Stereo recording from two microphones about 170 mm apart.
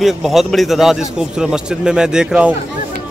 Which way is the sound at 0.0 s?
Centre (ahead or behind).